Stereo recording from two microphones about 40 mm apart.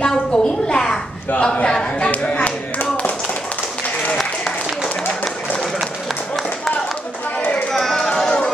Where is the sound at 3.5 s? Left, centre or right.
Left.